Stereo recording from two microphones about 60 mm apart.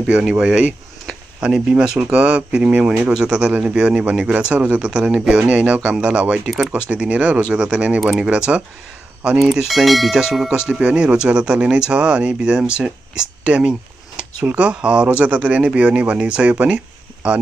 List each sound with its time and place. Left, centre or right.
0.0 s speech: centre
2.8 s speech: centre
6.4 s speech: centre
6.9 s speech: right
8.0 s speech: centre
8.3 s speech: centre
9.4 s speech: centre
10.7 s speech: centre